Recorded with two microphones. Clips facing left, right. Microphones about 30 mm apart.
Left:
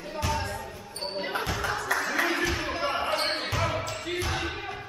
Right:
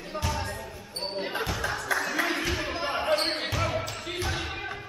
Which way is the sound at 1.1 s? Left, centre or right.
Centre.